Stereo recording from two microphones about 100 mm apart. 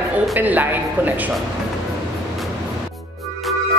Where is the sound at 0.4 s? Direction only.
15° right (ahead or behind).